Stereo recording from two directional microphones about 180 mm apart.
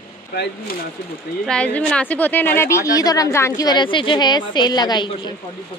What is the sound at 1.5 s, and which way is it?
A woman's voice, 5° left (ahead or behind).